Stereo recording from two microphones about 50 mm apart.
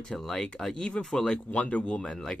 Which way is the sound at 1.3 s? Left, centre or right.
Left.